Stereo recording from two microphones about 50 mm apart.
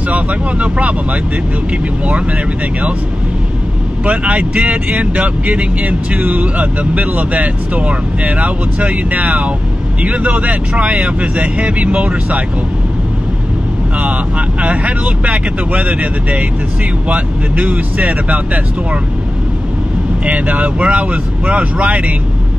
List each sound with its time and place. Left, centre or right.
0.1 s speech: right
4.0 s speech: right
14.6 s speech: right
20.2 s speech: right